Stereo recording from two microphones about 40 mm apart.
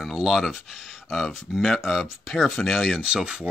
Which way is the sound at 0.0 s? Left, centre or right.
Centre.